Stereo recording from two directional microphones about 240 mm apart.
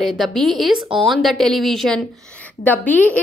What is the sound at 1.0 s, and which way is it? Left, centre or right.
A woman's voice, centre.